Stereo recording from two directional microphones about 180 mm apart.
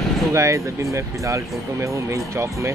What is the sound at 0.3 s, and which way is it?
Speech, 15° right (ahead or behind).